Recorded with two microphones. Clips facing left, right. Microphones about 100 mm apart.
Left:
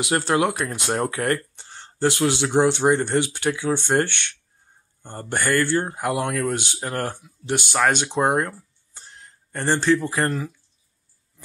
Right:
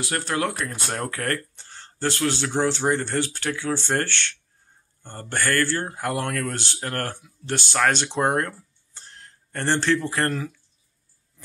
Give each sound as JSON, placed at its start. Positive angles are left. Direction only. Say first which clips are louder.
{"t": 0.0, "sound": "speech", "louder": "left 5 dB", "side_deg": 25}